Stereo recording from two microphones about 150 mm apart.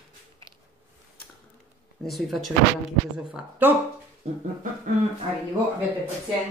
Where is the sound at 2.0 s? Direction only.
Centre (ahead or behind).